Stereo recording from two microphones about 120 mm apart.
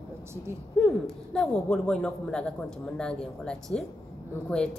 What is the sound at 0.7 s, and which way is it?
A woman's voice, centre (ahead or behind).